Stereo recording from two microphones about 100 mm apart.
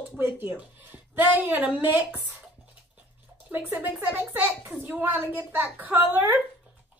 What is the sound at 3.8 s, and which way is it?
Speech, 20° right (ahead or behind).